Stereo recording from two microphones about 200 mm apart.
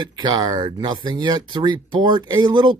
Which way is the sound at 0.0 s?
20° right (ahead or behind).